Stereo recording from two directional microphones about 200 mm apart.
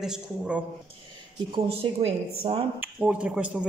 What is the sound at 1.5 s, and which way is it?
Speech, 30° right (ahead or behind).